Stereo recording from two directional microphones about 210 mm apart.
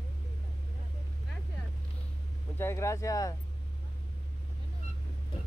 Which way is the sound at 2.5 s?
10° left (ahead or behind).